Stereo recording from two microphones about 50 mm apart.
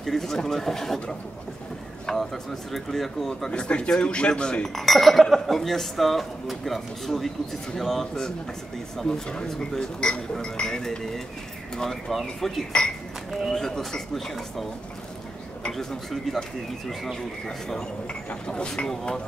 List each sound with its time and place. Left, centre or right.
0.0 s speech: centre
4.6 s speech: centre
12.1 s speech: centre
15.7 s speech: centre